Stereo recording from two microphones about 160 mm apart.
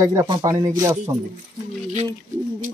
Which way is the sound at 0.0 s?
20° right (ahead or behind).